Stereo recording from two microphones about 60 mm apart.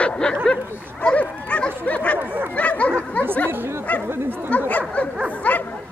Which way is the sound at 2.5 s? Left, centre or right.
Left.